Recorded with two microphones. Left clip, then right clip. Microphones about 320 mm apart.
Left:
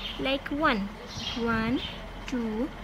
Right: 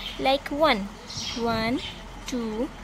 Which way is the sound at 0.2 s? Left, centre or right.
Centre.